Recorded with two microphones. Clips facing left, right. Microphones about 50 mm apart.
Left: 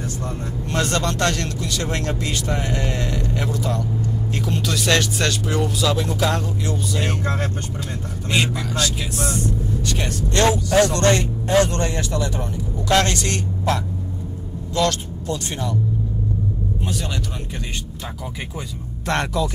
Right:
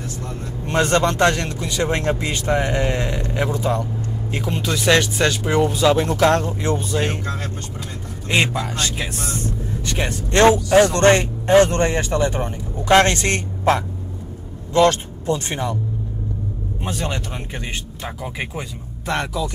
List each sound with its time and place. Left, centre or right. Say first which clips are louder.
0.7 s a man's voice: right 5 dB; right
6.0 s speech: right 5 dB; right
8.3 s speech: right 2 dB; right
16.8 s speech: right 6 dB; right
19.0 s speech: left 1 dB; centre